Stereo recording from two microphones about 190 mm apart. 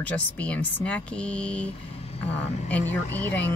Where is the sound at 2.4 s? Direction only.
35° left (ahead or behind).